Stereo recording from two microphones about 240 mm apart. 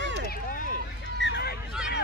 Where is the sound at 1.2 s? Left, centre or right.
Left.